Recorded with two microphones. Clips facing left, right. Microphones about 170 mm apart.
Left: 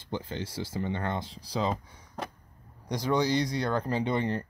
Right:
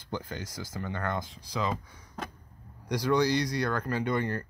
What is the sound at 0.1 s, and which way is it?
Speech, 25° left (ahead or behind).